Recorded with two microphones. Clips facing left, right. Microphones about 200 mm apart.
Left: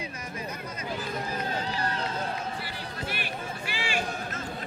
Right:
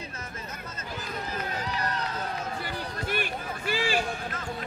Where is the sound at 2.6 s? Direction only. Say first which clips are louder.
Right 3 dB; 50° right (ahead or behind).